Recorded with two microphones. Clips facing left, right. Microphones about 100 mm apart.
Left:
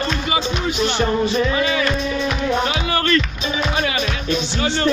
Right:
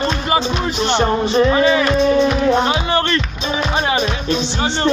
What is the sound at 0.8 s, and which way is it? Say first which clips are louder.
Music: right 3 dB; 30° right (ahead or behind).